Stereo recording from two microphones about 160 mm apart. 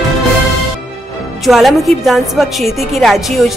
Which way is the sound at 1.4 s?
Centre (ahead or behind).